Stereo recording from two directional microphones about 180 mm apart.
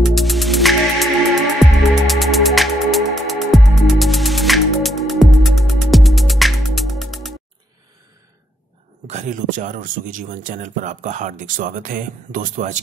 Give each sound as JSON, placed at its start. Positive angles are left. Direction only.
{"t": 0.0, "sound": "music", "side_deg": 0}
{"t": 9.0, "sound": "speech", "side_deg": -40}